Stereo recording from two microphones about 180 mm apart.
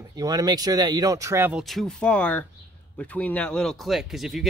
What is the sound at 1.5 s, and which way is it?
Speech, centre (ahead or behind).